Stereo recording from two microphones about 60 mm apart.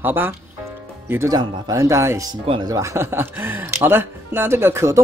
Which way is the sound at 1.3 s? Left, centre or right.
Right.